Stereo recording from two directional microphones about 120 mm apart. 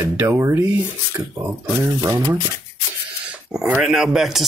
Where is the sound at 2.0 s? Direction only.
30° right (ahead or behind).